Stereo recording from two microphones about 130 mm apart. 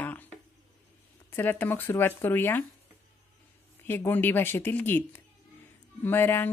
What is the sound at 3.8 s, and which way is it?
A woman's voice, 15° left (ahead or behind).